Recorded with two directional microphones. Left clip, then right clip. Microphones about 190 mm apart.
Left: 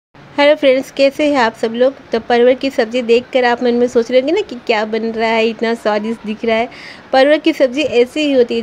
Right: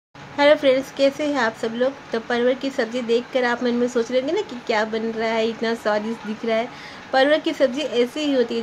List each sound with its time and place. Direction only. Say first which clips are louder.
0.4 s a woman's voice: left 5 dB; 30° left (ahead or behind)